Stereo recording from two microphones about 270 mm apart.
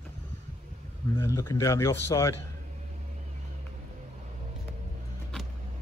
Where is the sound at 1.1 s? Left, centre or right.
Centre.